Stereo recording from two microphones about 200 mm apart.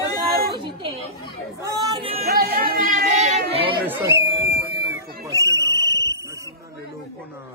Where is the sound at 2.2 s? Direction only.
50° right (ahead or behind); by 3.7 s 30° right (ahead or behind).